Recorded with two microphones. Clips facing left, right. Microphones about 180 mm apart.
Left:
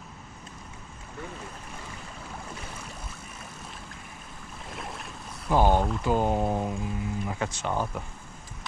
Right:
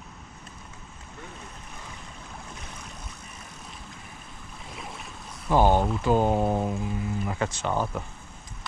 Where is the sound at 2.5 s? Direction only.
5° left (ahead or behind).